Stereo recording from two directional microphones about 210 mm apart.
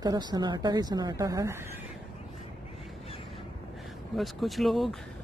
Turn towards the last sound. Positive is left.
turn(degrees=0)  # may be behind; listen again after turning